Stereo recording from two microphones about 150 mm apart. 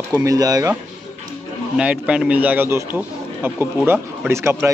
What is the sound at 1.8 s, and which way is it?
A man's voice, 5° right (ahead or behind).